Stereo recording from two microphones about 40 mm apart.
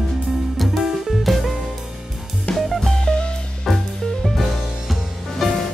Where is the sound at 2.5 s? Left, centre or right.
Centre.